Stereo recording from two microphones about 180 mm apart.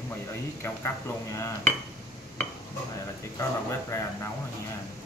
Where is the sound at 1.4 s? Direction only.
15° left (ahead or behind).